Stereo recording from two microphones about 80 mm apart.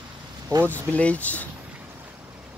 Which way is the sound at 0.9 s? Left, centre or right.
Centre.